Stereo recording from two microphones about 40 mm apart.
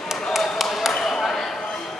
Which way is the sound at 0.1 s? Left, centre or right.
Centre.